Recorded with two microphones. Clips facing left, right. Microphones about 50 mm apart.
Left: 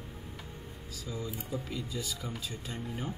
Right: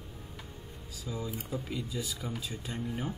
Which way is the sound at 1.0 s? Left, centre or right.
Centre.